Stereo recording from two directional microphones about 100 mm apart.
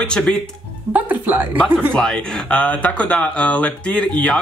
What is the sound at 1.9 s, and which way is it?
Speech, 5° left (ahead or behind).